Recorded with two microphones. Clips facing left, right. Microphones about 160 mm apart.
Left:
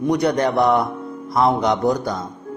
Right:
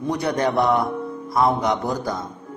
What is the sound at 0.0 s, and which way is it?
A man's voice, 15° left (ahead or behind).